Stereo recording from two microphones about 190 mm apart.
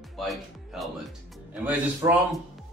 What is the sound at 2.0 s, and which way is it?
Speech, 20° right (ahead or behind).